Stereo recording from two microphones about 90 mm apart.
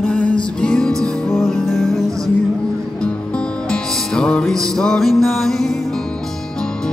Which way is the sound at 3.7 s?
10° left (ahead or behind).